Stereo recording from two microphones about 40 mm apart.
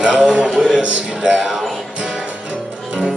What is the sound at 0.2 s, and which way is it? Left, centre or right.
Speech, right.